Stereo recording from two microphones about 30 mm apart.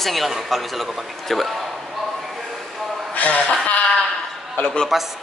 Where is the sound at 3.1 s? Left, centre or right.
Left.